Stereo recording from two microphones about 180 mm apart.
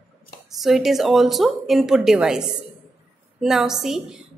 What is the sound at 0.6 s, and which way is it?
A woman's voice, centre (ahead or behind).